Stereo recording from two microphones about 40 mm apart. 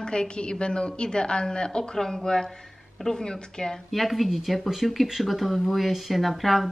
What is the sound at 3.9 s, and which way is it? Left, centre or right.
Speech, centre.